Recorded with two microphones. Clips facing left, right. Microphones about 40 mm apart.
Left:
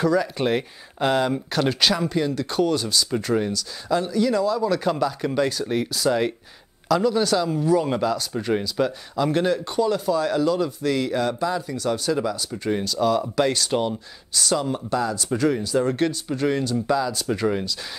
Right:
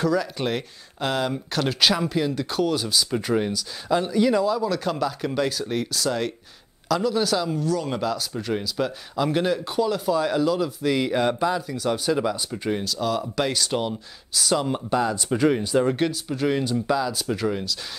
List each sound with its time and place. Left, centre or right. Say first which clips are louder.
0.0 s speech: left 2 dB; centre
4.6 s speech: left 3 dB; centre
7.6 s speech: left 5 dB; centre
7.9 s speech: left 3 dB; centre
11.5 s speech: even; centre
14.6 s speech: right 1 dB; centre